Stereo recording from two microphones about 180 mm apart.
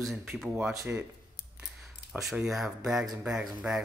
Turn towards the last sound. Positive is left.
turn(degrees=-5)  # may be behind; listen again after turning